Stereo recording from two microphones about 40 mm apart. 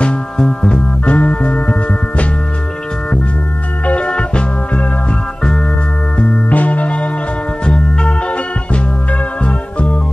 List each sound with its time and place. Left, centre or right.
0.4 s music: left
3.8 s music: left
6.1 s music: left
7.6 s organ: left
9.4 s music: left